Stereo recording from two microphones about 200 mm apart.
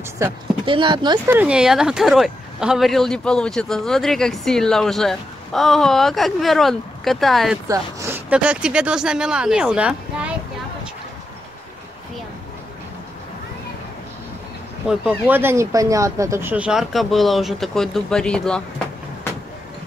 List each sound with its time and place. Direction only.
0.2 s speech: 25° right (ahead or behind)
1.3 s speech: 5° right (ahead or behind)
7.6 s speech: 15° right (ahead or behind)
14.9 s speech: 5° right (ahead or behind)